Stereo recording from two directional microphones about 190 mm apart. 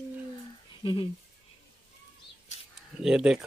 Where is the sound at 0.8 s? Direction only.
25° left (ahead or behind).